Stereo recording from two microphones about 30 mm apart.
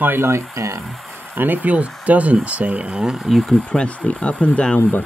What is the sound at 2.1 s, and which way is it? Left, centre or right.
Speech, right.